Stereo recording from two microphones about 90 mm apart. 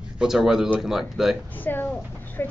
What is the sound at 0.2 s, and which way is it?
Speech, 5° right (ahead or behind).